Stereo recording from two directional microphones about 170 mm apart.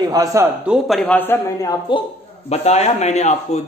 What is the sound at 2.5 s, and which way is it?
A man's voice, 40° left (ahead or behind).